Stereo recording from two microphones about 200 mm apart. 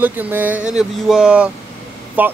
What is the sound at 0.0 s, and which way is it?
Speech, 10° right (ahead or behind).